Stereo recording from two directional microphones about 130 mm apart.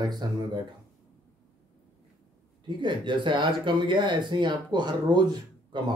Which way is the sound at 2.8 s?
40° right (ahead or behind).